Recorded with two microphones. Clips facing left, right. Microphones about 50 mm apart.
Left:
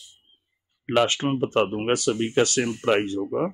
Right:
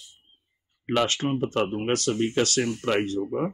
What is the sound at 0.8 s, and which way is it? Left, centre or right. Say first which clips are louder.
Speech: left 3 dB; centre.